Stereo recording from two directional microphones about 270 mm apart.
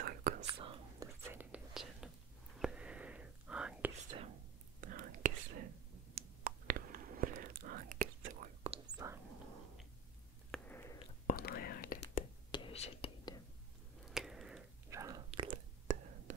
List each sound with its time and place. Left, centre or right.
0.0 s whispering: right
0.5 s whispering: centre
4.7 s whispering: right; by 9.2 s centre
10.5 s a sound: centre
11.0 s whispering: left
12.4 s whispering: centre
14.0 s a sound: centre
15.0 s whispering: centre
15.4 s whispering: right